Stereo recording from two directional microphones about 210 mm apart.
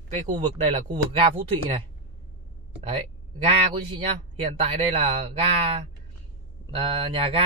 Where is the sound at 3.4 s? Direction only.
30° right (ahead or behind).